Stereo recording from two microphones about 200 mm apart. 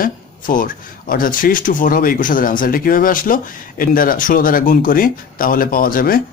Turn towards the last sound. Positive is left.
turn(degrees=45)  # may be behind; listen again after turning